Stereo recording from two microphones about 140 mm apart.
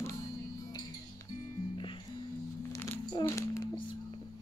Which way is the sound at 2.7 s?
20° left (ahead or behind).